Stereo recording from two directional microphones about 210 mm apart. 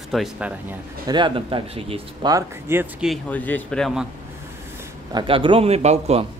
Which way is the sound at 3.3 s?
10° left (ahead or behind).